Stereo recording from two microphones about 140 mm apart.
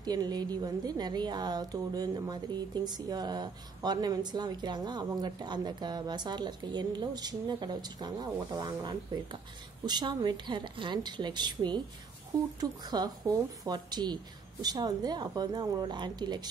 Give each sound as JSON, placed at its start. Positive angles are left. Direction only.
{"t": 0.0, "sound": "a woman's voice", "side_deg": -30}